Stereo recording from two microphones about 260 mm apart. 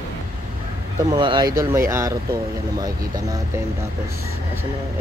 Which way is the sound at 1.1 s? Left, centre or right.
Centre.